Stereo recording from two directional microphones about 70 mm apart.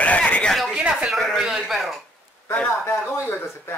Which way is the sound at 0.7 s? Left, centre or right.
Centre.